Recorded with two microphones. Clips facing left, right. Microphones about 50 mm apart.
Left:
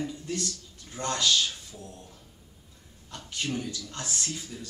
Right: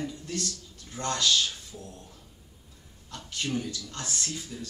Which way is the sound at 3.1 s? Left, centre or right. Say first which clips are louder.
Right 1 dB; centre.